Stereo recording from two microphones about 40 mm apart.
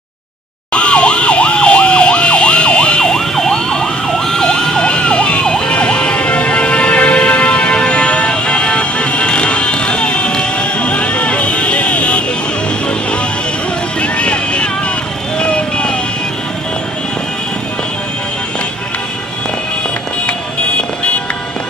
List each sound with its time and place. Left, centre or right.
0.7 s emergency vehicle: left
3.2 s emergency vehicle: centre; by 12.3 s left
14.0 s vehicle: left